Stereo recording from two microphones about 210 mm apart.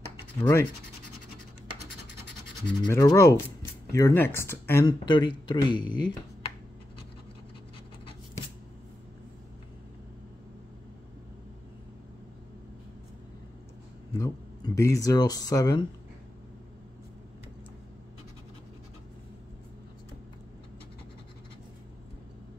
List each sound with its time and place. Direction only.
0.4 s speech: 10° left (ahead or behind)
2.8 s speech: 15° left (ahead or behind)
14.1 s speech: 15° left (ahead or behind)